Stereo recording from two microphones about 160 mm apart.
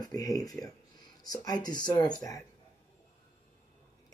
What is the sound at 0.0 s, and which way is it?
Speech, 25° left (ahead or behind).